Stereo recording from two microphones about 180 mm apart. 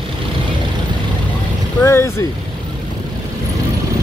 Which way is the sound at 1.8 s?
15° left (ahead or behind).